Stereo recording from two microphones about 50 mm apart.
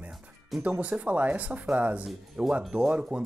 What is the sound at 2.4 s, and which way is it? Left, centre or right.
Speech, centre.